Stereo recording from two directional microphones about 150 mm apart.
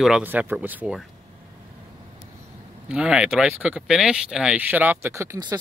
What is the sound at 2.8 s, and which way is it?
Speech, 5° right (ahead or behind).